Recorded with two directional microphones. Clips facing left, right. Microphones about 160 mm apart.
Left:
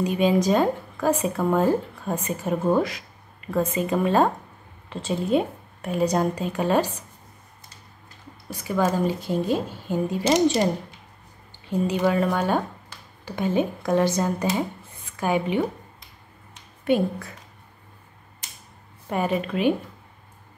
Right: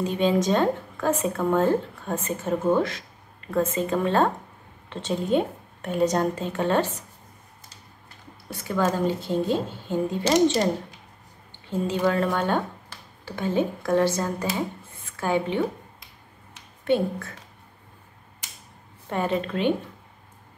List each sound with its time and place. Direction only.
0.0 s speech: 10° left (ahead or behind)
8.5 s speech: 10° left (ahead or behind)
11.9 s speech: 15° left (ahead or behind)
16.8 s speech: 10° left (ahead or behind)
19.0 s speech: 10° left (ahead or behind)